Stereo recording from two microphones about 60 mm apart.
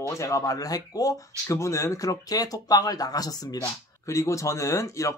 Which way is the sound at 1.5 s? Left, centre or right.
Left.